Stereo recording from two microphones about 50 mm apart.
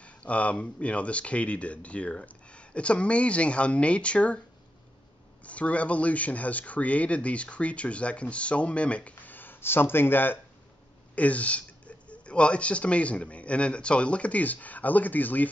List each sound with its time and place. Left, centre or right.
0.0 s speech: left
5.4 s speech: left
11.1 s speech: left